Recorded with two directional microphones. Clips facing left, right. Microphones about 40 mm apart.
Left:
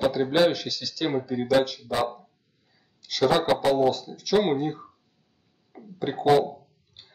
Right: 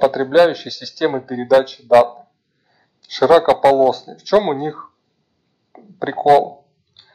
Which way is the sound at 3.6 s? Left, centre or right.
Right.